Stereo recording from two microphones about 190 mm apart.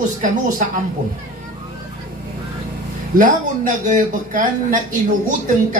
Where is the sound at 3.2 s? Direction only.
45° right (ahead or behind).